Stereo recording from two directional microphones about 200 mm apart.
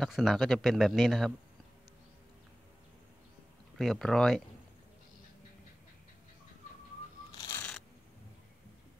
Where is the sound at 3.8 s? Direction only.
Centre (ahead or behind).